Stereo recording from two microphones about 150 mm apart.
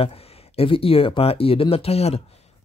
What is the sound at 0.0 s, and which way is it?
Speech, 40° left (ahead or behind).